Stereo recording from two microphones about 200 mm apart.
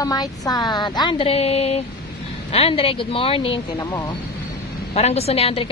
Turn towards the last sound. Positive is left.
turn(degrees=30)  # may be behind; listen again after turning